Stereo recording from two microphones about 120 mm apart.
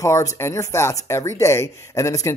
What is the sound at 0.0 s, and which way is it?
Speech, 25° left (ahead or behind).